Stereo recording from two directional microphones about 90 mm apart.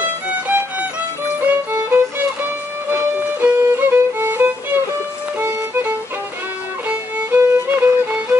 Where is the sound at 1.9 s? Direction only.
25° right (ahead or behind).